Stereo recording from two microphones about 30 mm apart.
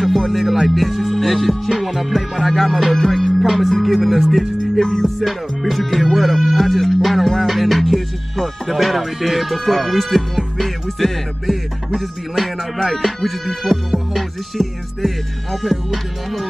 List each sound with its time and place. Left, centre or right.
0.3 s music: centre
3.4 s music: centre
4.7 s music: left
5.0 s music: centre